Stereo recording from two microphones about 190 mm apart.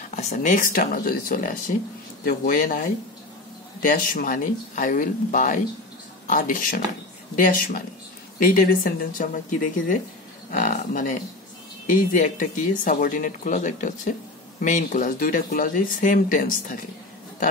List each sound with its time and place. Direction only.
0.1 s speech: 40° left (ahead or behind)